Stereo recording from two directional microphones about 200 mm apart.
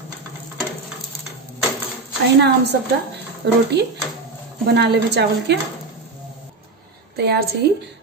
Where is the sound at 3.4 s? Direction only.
60° right (ahead or behind).